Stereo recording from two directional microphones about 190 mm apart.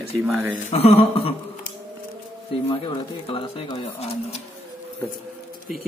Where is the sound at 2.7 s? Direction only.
25° left (ahead or behind).